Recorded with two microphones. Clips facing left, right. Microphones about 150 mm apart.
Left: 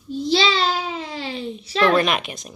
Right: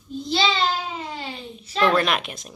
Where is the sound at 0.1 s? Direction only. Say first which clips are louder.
Left 4 dB; 80° left.